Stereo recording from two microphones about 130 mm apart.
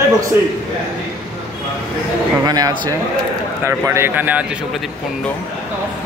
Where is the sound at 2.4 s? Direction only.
30° right (ahead or behind); by 4.5 s 15° right (ahead or behind).